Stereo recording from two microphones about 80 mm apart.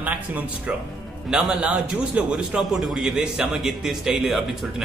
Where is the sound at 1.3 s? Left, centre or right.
Centre.